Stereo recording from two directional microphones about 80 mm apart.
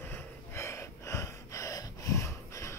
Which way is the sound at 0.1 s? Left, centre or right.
Left.